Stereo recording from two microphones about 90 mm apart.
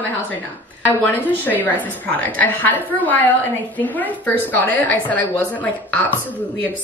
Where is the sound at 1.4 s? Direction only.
20° left (ahead or behind).